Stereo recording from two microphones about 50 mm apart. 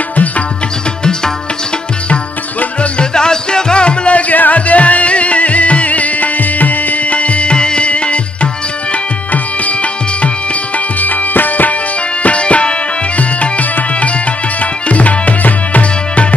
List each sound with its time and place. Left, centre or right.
2.8 s music: centre
4.3 s music: left
14.6 s tabla: left